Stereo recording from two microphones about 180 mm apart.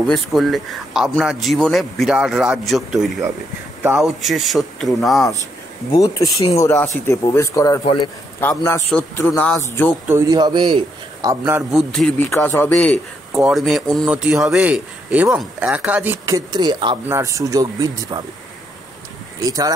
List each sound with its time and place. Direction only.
0.0 s a man's voice: centre (ahead or behind)
5.9 s speech: 20° left (ahead or behind)
7.8 s a man's voice: 30° left (ahead or behind)
8.4 s speech: 15° left (ahead or behind)
10.0 s a man's voice: 15° right (ahead or behind)
11.7 s a man's voice: 5° left (ahead or behind)
13.3 s a man's voice: centre (ahead or behind); by 18.2 s 20° right (ahead or behind)
19.4 s a man's voice: 20° right (ahead or behind)